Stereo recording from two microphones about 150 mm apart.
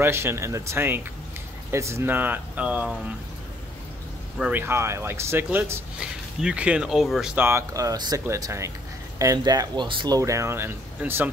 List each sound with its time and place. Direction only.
0.0 s speech: 15° right (ahead or behind)
4.4 s speech: 10° right (ahead or behind)